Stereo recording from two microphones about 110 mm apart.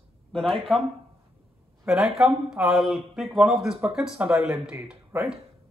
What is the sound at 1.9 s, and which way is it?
Speech, 5° right (ahead or behind).